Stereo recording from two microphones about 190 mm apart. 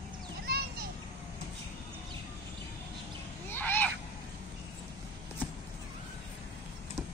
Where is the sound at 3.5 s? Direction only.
10° left (ahead or behind).